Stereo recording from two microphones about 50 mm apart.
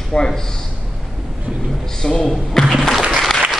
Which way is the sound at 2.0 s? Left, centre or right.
Centre.